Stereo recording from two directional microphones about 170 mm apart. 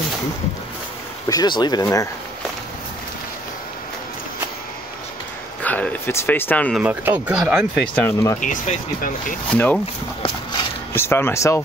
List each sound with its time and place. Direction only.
1.3 s speech: 25° left (ahead or behind)
5.6 s speech: 10° left (ahead or behind)
6.8 s speech: 10° right (ahead or behind)
8.4 s speech: 50° left (ahead or behind)
9.5 s speech: 10° left (ahead or behind)
10.2 s a sound: 30° left (ahead or behind)
11.0 s speech: 15° left (ahead or behind)